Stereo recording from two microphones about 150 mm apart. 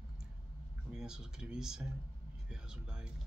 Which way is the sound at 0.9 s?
5° right (ahead or behind).